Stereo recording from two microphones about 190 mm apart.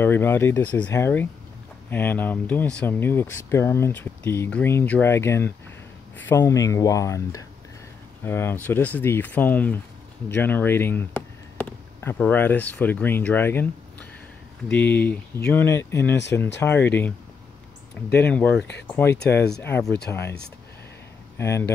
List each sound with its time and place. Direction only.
0.0 s speech: 10° left (ahead or behind)
18.1 s speech: 10° left (ahead or behind)
19.5 s speech: 5° left (ahead or behind)